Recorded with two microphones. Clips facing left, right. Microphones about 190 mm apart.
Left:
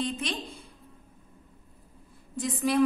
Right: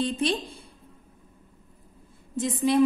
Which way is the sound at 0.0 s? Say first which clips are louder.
Right 6 dB; 30° right (ahead or behind).